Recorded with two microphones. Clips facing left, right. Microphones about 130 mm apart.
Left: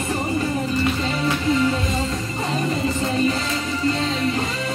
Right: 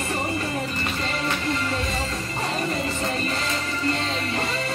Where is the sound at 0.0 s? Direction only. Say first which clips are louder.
Left 4 dB; 20° left (ahead or behind).